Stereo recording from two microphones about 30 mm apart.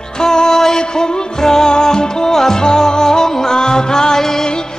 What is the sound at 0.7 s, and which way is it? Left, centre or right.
Music, left.